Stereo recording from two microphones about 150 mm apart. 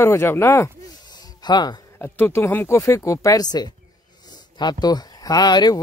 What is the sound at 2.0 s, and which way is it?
Speech, 15° left (ahead or behind).